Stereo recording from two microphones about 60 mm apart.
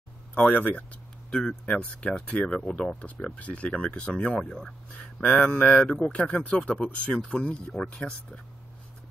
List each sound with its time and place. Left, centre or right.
0.5 s speech: left
1.3 s speech: centre
5.2 s speech: left
7.7 s speech: centre